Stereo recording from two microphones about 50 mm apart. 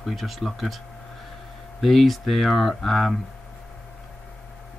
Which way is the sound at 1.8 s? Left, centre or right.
Centre.